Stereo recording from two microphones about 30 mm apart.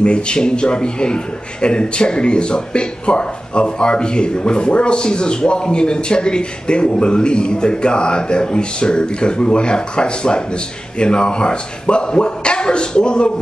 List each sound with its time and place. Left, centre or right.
0.0 s a man's voice: left